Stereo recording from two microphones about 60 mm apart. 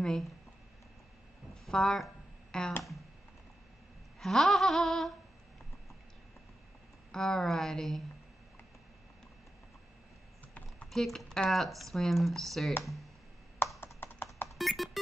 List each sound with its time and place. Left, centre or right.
0.0 s speech: centre
1.7 s speech: centre
4.2 s speech: centre
7.1 s speech: centre
10.9 s speech: centre
13.9 s a sound: left
14.6 s a sound: centre